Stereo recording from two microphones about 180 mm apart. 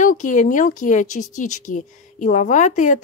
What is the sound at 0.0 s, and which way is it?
Speech, 45° left (ahead or behind).